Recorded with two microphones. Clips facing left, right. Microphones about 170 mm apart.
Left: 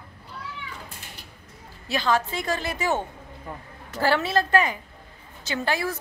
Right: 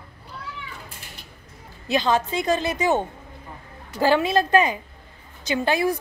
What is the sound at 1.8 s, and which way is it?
A woman's voice, 20° right (ahead or behind).